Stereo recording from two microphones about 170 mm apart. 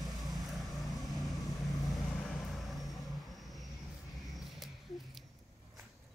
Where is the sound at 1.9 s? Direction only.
Centre (ahead or behind).